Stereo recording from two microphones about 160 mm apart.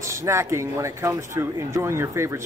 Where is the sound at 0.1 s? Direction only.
20° right (ahead or behind).